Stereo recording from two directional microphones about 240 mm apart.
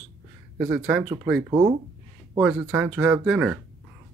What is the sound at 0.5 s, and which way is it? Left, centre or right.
Speech, centre.